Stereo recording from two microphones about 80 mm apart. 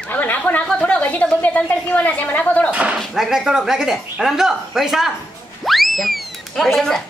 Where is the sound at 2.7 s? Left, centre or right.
Centre.